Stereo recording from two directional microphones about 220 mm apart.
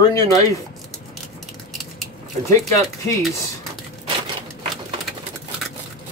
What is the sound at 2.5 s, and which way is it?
Speech, 15° left (ahead or behind).